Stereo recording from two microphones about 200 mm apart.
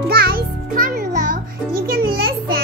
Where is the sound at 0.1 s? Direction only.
50° right (ahead or behind).